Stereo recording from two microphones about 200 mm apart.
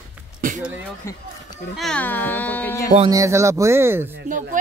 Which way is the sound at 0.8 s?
15° left (ahead or behind).